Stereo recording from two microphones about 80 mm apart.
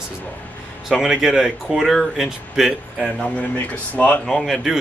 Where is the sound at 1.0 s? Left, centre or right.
Centre.